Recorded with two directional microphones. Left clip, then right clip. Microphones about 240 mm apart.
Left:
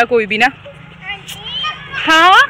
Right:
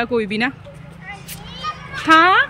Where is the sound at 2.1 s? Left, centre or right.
Centre.